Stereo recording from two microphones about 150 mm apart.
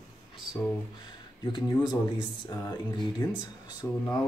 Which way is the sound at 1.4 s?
30° left (ahead or behind).